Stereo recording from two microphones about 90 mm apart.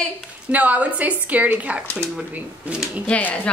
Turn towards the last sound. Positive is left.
turn(degrees=15)  # may be behind; listen again after turning